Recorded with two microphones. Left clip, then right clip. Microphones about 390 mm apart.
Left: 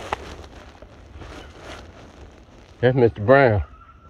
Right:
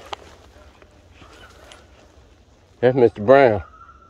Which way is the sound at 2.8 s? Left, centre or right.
Right.